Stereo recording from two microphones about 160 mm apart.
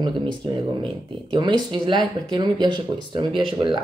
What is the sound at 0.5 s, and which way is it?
Speech, 30° right (ahead or behind).